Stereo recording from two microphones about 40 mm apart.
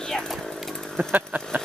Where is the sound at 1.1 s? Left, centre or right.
Right.